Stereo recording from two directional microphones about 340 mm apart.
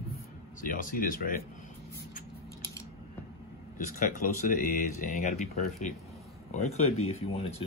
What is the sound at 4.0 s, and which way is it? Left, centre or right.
Speech, left.